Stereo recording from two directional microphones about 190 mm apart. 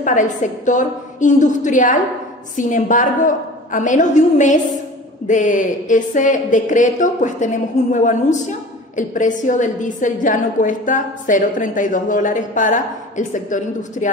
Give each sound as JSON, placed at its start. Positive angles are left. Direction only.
{"t": 0.0, "sound": "a woman's voice", "side_deg": 40}